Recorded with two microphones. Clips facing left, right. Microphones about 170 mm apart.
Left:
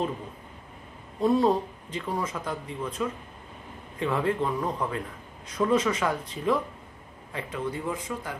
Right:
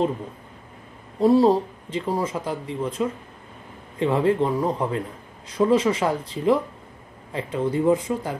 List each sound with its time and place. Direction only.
1.2 s speech: 30° right (ahead or behind)